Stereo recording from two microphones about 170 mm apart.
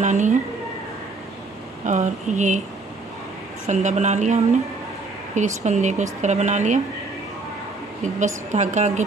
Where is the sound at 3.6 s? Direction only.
45° right (ahead or behind).